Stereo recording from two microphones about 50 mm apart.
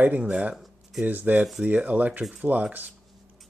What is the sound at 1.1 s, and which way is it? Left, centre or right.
Speech, right.